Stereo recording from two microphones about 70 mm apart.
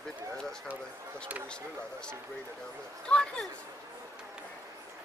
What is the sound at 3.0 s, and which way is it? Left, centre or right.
Speech, centre.